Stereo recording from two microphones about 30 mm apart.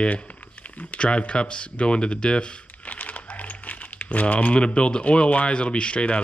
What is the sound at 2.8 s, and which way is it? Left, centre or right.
Crumpling, left.